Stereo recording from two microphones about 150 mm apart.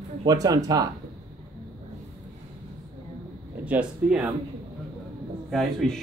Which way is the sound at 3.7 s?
5° right (ahead or behind).